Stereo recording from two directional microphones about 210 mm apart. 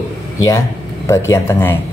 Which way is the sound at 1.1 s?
15° left (ahead or behind).